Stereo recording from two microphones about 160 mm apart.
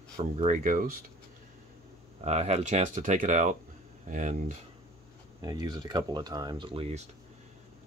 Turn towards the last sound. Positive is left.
turn(degrees=-40)  # may be behind; listen again after turning